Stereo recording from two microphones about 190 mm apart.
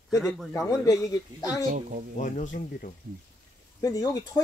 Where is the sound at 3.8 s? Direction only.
20° left (ahead or behind).